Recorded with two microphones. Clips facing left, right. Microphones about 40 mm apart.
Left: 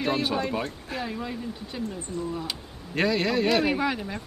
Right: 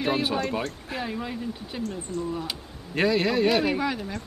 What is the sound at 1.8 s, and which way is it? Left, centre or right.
Speech, centre.